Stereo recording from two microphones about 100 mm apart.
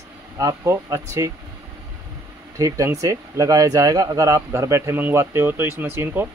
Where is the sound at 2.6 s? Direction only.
30° right (ahead or behind).